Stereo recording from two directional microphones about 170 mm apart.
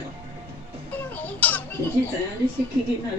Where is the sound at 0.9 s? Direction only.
10° left (ahead or behind).